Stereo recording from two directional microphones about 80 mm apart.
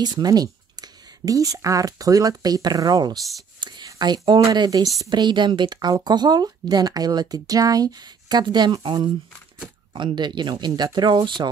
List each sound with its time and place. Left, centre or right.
0.0 s speech: right
5.1 s speech: right